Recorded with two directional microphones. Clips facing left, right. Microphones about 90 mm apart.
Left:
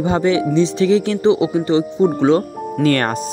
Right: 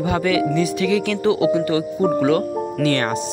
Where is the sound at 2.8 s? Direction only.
50° left (ahead or behind).